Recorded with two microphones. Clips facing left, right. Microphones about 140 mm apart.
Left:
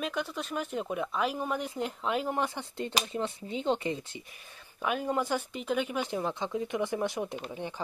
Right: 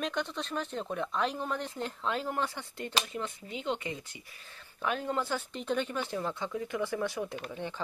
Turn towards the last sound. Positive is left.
turn(degrees=15)  # may be behind; listen again after turning